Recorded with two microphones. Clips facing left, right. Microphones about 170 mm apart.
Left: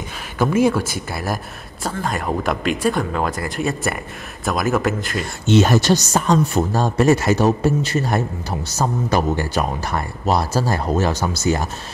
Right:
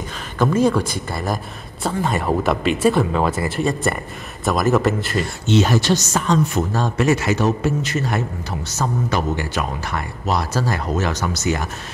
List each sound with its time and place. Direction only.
0.4 s speech: 10° left (ahead or behind)
5.5 s speech: 50° left (ahead or behind); by 11.6 s 30° left (ahead or behind)